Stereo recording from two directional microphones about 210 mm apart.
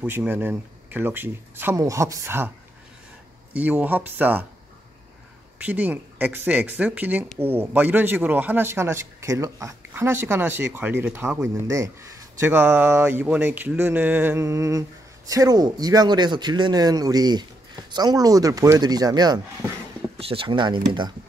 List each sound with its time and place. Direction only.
0.0 s speech: 10° right (ahead or behind)
3.5 s speech: 5° right (ahead or behind)
5.7 s speech: 10° right (ahead or behind)